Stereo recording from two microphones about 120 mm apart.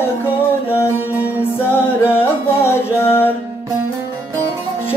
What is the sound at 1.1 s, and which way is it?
Music, 15° right (ahead or behind).